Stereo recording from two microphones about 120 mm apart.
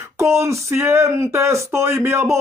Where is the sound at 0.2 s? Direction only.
25° right (ahead or behind).